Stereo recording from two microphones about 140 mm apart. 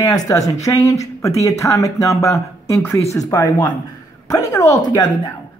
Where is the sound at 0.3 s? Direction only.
25° left (ahead or behind).